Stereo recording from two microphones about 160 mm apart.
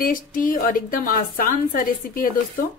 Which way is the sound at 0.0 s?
60° left (ahead or behind).